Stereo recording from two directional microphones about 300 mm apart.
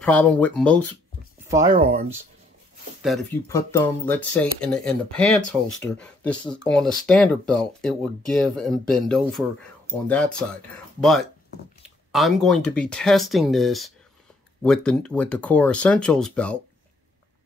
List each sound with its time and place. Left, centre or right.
0.0 s speech: centre
1.7 s speech: right
3.4 s speech: centre